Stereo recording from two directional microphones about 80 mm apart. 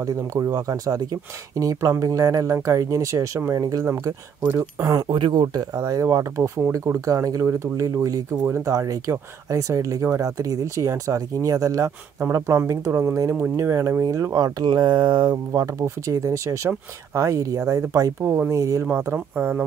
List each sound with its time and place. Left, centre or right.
0.0 s speech: right
5.0 s speech: right
15.5 s speech: right
18.9 s speech: right